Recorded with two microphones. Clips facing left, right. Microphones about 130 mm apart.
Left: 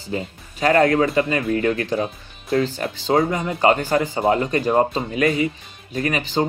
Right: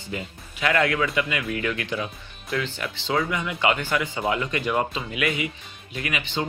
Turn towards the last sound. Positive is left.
turn(degrees=40)  # may be behind; listen again after turning